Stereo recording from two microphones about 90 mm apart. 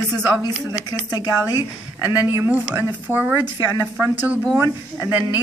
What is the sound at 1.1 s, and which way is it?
Speech, 45° left (ahead or behind).